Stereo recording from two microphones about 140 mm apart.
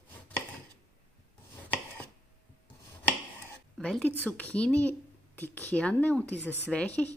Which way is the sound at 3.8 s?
5° left (ahead or behind).